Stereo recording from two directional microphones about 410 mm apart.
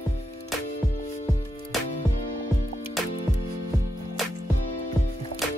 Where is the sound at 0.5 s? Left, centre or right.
Centre.